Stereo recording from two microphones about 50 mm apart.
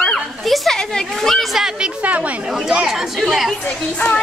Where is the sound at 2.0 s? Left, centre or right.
Right.